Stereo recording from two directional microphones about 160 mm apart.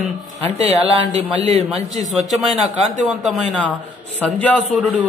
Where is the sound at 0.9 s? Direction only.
40° right (ahead or behind).